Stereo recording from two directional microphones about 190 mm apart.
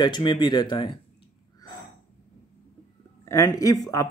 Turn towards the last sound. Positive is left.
turn(degrees=20)  # may be behind; listen again after turning